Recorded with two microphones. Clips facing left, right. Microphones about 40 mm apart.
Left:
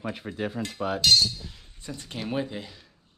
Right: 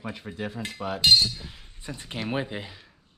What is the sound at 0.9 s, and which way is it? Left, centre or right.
Speech, right.